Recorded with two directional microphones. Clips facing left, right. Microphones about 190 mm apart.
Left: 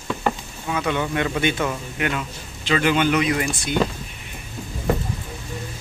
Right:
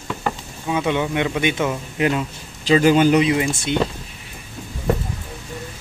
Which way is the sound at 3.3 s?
20° right (ahead or behind).